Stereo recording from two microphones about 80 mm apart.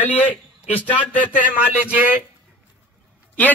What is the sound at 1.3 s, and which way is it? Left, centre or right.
Speech, centre.